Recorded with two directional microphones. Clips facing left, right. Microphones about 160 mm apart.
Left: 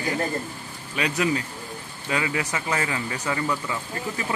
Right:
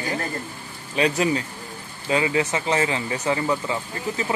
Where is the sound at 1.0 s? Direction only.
30° right (ahead or behind).